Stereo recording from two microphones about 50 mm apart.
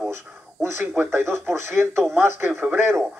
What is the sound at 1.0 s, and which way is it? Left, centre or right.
A man's voice, right.